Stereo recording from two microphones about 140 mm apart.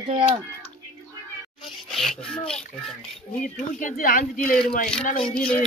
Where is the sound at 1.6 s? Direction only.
Centre (ahead or behind).